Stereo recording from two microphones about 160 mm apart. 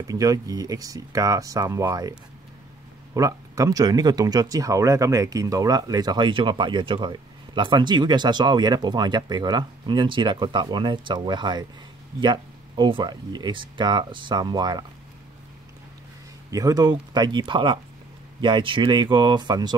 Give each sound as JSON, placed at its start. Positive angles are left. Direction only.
{"t": 0.0, "sound": "speech", "side_deg": -20}
{"t": 3.2, "sound": "speech", "side_deg": -20}
{"t": 16.4, "sound": "speech", "side_deg": -20}